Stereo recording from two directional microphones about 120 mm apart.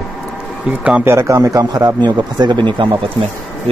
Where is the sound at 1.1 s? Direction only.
25° right (ahead or behind); by 2.9 s 45° right (ahead or behind).